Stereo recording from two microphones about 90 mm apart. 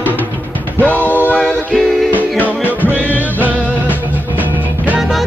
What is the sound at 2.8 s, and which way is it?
Music, 20° right (ahead or behind).